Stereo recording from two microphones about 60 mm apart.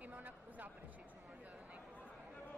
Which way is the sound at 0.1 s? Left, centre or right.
Right.